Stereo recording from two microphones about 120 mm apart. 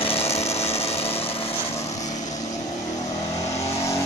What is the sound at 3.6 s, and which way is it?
Vehicle, 25° left (ahead or behind).